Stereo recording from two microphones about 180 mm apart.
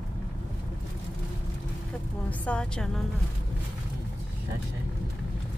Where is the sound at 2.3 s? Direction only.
5° left (ahead or behind).